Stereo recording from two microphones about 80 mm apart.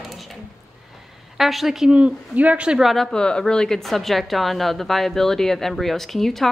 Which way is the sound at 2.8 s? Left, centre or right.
Centre.